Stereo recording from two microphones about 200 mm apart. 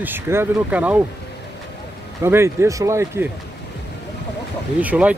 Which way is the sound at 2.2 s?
10° right (ahead or behind).